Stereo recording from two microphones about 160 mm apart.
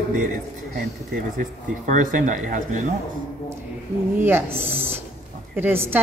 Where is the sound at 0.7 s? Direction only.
65° right (ahead or behind).